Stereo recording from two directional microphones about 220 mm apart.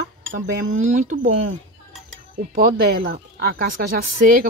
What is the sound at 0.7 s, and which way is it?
Speech, 30° right (ahead or behind).